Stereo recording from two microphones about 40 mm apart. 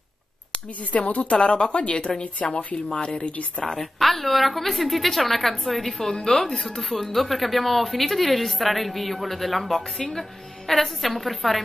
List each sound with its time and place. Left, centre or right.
0.7 s speech: left
1.4 s speech: left
3.6 s speech: centre